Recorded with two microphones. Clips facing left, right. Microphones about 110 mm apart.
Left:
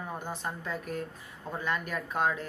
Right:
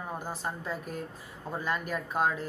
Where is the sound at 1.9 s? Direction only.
5° right (ahead or behind).